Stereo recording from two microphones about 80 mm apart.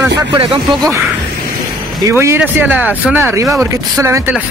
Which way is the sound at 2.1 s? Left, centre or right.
Right.